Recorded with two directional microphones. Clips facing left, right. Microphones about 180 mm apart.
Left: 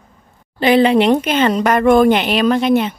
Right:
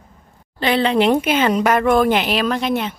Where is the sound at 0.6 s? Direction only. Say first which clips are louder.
Left 6 dB; 10° left (ahead or behind).